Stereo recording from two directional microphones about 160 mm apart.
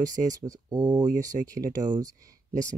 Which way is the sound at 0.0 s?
20° right (ahead or behind).